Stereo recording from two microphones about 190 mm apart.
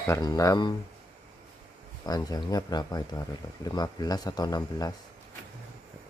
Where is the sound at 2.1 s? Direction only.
20° left (ahead or behind).